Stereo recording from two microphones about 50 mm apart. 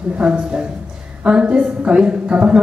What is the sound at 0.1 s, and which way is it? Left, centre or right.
A woman's voice, right.